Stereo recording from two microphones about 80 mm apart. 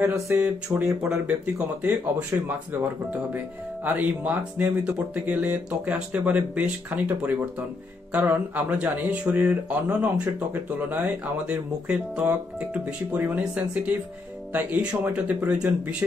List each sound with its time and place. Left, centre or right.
0.0 s speech: right
1.2 s speech: centre